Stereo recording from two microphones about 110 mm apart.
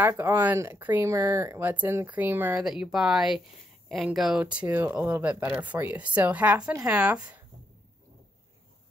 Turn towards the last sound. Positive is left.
turn(degrees=-10)  # may be behind; listen again after turning